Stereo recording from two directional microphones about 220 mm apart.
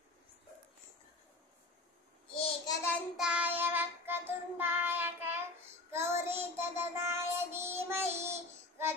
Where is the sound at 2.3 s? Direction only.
25° left (ahead or behind).